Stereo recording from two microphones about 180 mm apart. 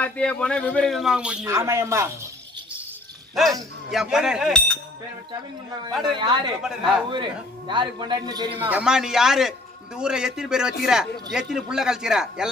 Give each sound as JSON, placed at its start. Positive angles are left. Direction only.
{"t": 0.0, "sound": "a man's voice", "side_deg": 5}
{"t": 1.5, "sound": "a man's voice", "side_deg": -15}
{"t": 3.9, "sound": "a man's voice", "side_deg": -5}
{"t": 6.0, "sound": "a man's voice", "side_deg": -25}
{"t": 6.6, "sound": "a man's voice", "side_deg": -5}
{"t": 7.1, "sound": "a man's voice", "side_deg": -25}
{"t": 8.6, "sound": "a man's voice", "side_deg": -5}